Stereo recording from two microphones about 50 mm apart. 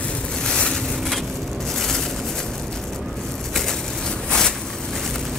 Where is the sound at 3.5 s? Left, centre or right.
Centre.